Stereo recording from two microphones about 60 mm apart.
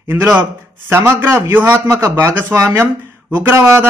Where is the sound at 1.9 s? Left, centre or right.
Right.